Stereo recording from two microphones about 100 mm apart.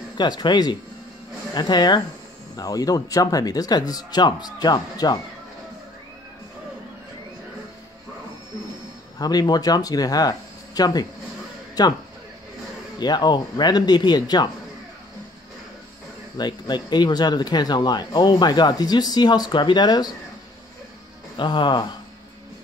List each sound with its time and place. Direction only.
0.2 s speech: 50° left (ahead or behind)
9.2 s speech: 40° left (ahead or behind)
13.0 s speech: 45° left (ahead or behind)
16.3 s speech: 45° left (ahead or behind)
21.4 s speech: 50° left (ahead or behind)